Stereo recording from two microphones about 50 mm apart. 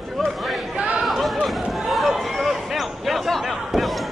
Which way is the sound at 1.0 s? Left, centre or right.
Centre.